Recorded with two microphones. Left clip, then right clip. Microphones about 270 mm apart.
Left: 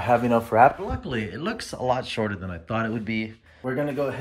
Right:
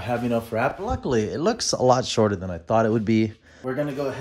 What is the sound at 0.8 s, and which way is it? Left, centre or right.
Speech, centre.